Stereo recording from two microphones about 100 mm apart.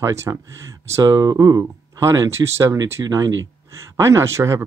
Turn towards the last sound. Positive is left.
turn(degrees=-30)  # may be behind; listen again after turning